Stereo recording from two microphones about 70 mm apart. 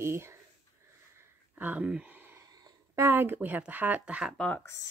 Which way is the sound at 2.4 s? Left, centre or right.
Right.